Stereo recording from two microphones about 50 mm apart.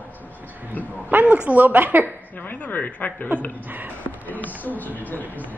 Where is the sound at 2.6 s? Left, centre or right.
Left.